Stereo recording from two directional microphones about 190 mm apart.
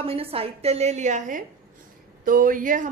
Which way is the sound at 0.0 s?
30° right (ahead or behind).